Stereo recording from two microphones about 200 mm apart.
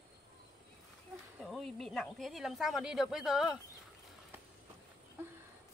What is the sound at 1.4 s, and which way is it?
Speech, centre (ahead or behind).